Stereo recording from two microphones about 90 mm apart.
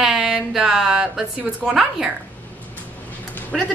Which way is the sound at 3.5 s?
Centre (ahead or behind).